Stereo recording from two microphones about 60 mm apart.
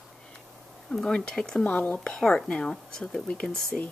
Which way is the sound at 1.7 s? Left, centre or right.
Left.